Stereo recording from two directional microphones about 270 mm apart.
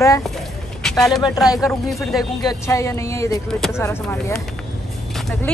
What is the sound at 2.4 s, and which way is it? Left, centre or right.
Speech, centre.